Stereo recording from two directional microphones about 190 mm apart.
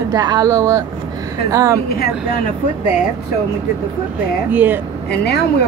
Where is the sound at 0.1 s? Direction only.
20° right (ahead or behind).